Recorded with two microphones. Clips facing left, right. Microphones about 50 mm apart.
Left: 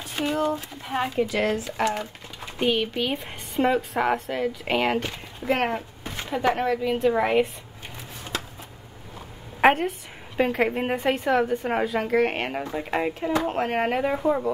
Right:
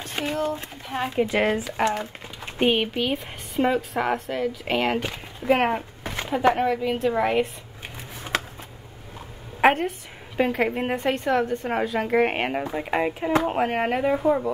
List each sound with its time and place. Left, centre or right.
0.2 s a sound: centre
0.8 s speech: centre
1.1 s speech: right
2.4 s a sound: right
2.9 s a woman's voice: centre
5.0 s a woman's voice: centre
9.6 s a woman's voice: centre
12.1 s a woman's voice: centre